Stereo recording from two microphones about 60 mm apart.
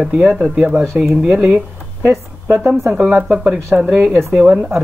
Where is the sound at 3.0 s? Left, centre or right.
Right.